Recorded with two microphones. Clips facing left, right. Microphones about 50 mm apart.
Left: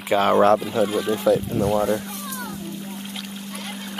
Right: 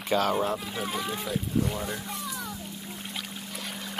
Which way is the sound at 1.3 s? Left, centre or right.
Left.